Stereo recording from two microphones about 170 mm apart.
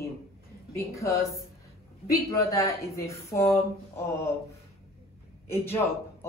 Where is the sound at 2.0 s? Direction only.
20° left (ahead or behind).